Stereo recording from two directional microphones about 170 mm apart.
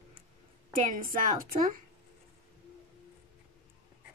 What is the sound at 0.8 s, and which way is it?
Speech, 50° right (ahead or behind).